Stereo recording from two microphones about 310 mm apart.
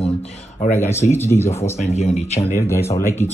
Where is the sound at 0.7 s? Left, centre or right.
Centre.